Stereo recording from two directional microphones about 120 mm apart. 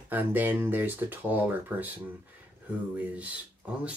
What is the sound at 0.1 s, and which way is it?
Speech, 15° right (ahead or behind).